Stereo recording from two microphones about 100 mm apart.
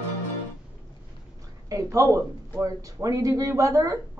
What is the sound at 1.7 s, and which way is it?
Speech, 30° right (ahead or behind).